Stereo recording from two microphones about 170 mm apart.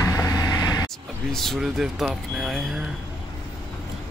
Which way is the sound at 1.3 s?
Centre (ahead or behind).